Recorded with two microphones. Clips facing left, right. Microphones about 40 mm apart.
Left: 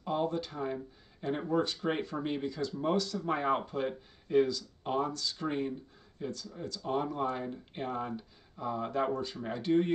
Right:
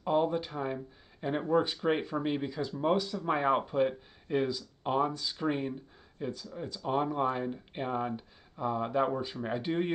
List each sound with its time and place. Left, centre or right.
0.0 s speech: centre